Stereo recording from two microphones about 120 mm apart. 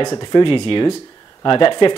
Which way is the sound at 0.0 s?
35° left (ahead or behind).